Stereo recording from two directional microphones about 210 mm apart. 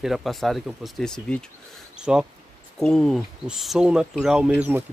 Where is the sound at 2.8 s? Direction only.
Centre (ahead or behind).